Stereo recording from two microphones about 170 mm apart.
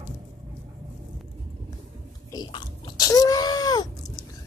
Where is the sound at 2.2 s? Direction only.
25° left (ahead or behind).